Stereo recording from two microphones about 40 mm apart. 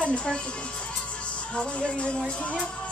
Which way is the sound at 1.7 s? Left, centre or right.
Left.